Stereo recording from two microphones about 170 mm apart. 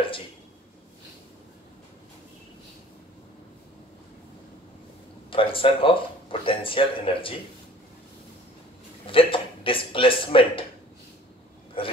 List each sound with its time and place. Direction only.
5.3 s speech: 30° left (ahead or behind)
9.0 s speech: 30° left (ahead or behind)
11.8 s speech: 30° left (ahead or behind)